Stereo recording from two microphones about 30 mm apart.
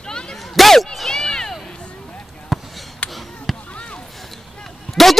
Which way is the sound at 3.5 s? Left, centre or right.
Centre.